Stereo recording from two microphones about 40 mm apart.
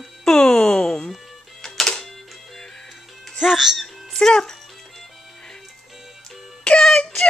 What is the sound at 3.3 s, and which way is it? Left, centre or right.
Speech, centre.